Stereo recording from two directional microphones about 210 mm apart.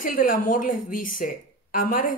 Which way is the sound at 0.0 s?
40° left (ahead or behind).